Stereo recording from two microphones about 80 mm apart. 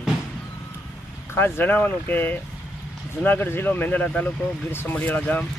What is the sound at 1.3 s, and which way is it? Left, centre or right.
Speech, left.